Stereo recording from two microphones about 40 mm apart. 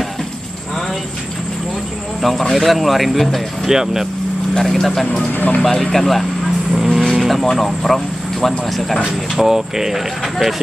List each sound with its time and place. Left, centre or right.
2.5 s speech: centre
3.6 s speech: centre
4.6 s speech: centre
5.3 s speech: left
5.6 s speech: centre
6.7 s vehicle: centre
7.5 s speech: centre
9.4 s speech: centre